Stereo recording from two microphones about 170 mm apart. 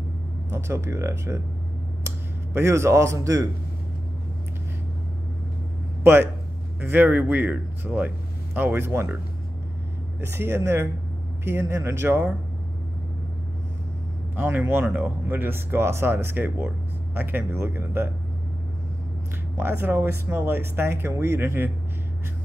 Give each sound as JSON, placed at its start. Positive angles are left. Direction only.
{"t": 0.5, "sound": "speech", "side_deg": -15}
{"t": 6.8, "sound": "speech", "side_deg": -10}
{"t": 10.2, "sound": "speech", "side_deg": -15}
{"t": 14.3, "sound": "speech", "side_deg": -10}
{"t": 19.6, "sound": "speech", "side_deg": -15}